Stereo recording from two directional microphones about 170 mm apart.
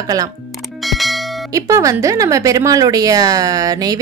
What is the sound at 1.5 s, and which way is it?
A woman's voice, 20° right (ahead or behind).